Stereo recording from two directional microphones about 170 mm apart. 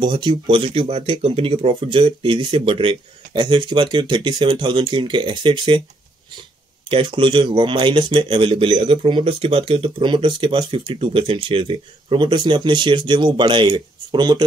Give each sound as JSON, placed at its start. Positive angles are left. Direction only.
{"t": 0.0, "sound": "a man's voice", "side_deg": -25}
{"t": 6.9, "sound": "a man's voice", "side_deg": -30}